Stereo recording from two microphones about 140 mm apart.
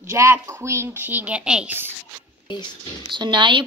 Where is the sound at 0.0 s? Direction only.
20° right (ahead or behind).